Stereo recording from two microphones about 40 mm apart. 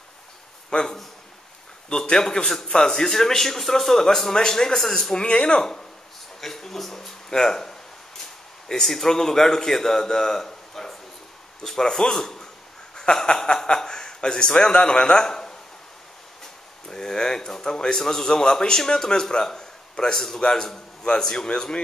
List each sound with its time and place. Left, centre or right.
0.7 s a man's voice: left
5.1 s speech: left
16.9 s speech: centre